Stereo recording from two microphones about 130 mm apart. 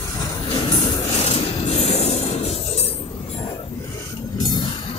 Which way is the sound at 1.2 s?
50° left (ahead or behind).